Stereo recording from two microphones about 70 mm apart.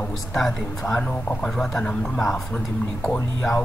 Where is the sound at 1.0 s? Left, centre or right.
Centre.